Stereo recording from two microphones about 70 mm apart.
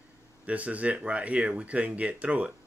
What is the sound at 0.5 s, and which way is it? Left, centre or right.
Speech, centre.